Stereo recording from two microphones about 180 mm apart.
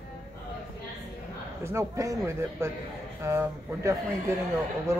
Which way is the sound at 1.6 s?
15° right (ahead or behind).